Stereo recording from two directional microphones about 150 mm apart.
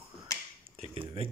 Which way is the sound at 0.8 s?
40° right (ahead or behind).